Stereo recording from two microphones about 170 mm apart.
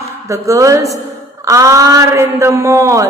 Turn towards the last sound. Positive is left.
turn(degrees=-20)  # may be behind; listen again after turning